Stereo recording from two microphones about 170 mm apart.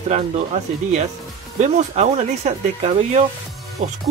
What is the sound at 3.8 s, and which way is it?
Speech, 45° right (ahead or behind).